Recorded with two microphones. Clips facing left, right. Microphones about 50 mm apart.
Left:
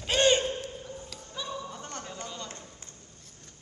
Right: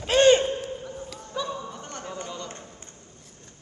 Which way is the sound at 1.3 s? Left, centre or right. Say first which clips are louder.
Right 8 dB; right.